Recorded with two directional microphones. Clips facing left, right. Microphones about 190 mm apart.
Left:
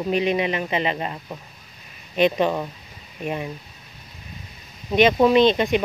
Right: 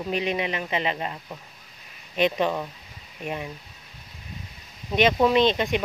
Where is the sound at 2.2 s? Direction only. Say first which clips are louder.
Left 4 dB; 25° left (ahead or behind).